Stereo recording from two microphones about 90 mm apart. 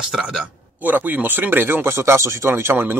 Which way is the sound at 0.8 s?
20° right (ahead or behind).